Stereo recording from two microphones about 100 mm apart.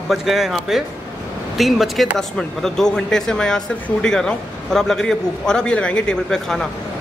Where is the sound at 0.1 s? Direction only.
Centre (ahead or behind).